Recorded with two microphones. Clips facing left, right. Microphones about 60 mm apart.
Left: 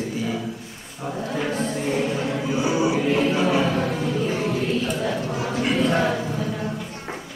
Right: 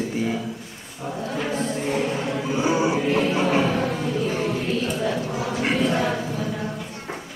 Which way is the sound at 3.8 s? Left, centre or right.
Centre.